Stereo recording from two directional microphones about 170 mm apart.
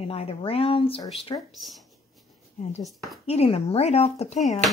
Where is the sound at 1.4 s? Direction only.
Centre (ahead or behind).